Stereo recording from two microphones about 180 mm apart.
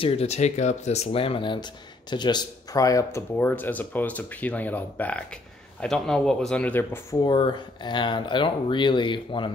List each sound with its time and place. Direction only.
0.0 s speech: 35° left (ahead or behind); by 7.2 s 10° left (ahead or behind)
7.2 s speech: 25° left (ahead or behind)